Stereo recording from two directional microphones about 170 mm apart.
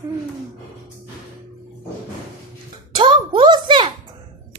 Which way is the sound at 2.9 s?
30° right (ahead or behind).